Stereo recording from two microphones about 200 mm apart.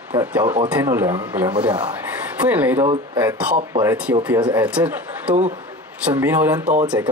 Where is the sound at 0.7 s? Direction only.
10° right (ahead or behind).